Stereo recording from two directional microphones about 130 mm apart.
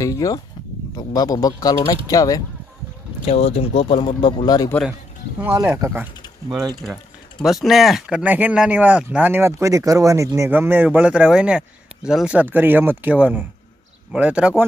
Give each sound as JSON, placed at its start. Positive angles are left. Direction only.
{"t": 0.0, "sound": "speech", "side_deg": 25}
{"t": 3.3, "sound": "speech", "side_deg": 55}
{"t": 5.4, "sound": "speech", "side_deg": -15}
{"t": 7.4, "sound": "speech", "side_deg": 0}